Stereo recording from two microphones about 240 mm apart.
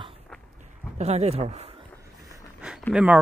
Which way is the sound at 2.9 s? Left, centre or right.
Centre.